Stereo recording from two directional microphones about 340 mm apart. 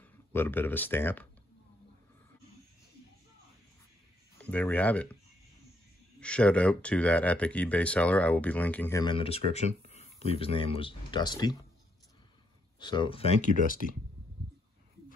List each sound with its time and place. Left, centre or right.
0.0 s speech: centre
4.4 s speech: centre
6.1 s speech: centre
12.7 s speech: centre